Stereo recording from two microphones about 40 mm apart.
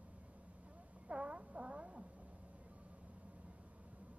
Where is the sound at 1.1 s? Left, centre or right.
Right.